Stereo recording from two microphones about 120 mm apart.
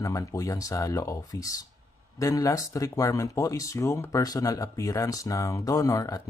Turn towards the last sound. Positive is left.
turn(degrees=30)  # may be behind; listen again after turning